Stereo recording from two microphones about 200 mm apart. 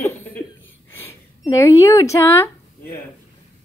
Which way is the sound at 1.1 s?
15° left (ahead or behind).